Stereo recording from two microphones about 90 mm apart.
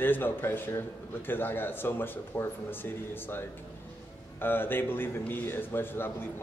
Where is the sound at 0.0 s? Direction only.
25° left (ahead or behind).